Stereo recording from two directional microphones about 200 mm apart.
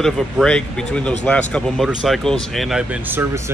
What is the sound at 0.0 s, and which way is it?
Speech, 5° left (ahead or behind).